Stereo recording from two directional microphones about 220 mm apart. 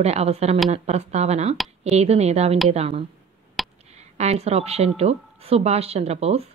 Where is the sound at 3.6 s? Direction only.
Centre (ahead or behind).